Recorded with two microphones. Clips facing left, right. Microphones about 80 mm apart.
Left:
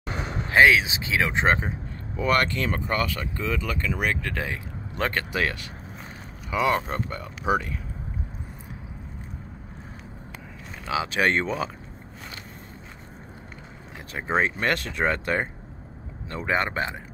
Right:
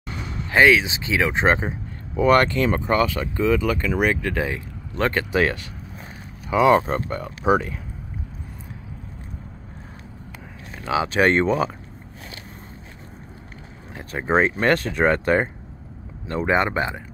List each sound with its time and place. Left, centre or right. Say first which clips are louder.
0.0 s vehicle: left 1 dB; left
0.5 s speech: right 2 dB; centre
1.4 s speech: right 3 dB; right
2.2 s speech: right 6 dB; right; by 4.6 s centre
4.9 s speech: right 5 dB; centre
5.3 s speech: right 6 dB; right
6.9 s speech: right 5 dB; right
7.4 s speech: right 5 dB; right
10.9 s speech: right 5 dB; right
14.1 s speech: right 5 dB; right
16.5 s speech: right 3 dB; centre